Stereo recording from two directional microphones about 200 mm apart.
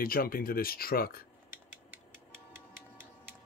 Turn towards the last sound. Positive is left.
turn(degrees=-10)  # may be behind; listen again after turning